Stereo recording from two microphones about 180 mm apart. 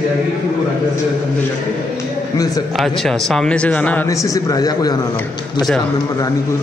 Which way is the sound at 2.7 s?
Centre (ahead or behind).